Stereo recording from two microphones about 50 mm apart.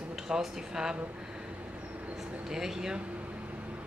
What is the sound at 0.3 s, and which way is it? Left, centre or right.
Speech, centre.